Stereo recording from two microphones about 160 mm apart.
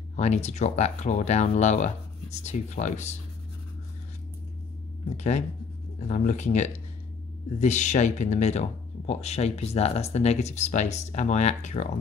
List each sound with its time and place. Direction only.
0.1 s speech: 45° left (ahead or behind)
5.1 s speech: 45° left (ahead or behind)